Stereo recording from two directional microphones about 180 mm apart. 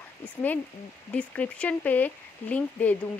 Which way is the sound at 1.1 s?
5° left (ahead or behind).